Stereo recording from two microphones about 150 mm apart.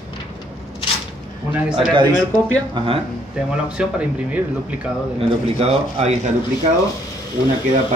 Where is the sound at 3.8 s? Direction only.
5° right (ahead or behind).